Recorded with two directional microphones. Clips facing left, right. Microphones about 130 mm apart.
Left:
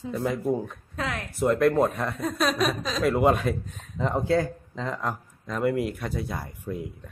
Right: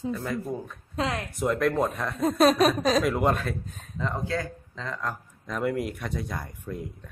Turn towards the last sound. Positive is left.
turn(degrees=5)  # may be behind; listen again after turning